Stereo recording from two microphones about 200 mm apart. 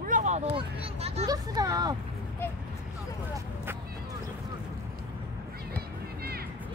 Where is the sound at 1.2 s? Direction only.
20° right (ahead or behind).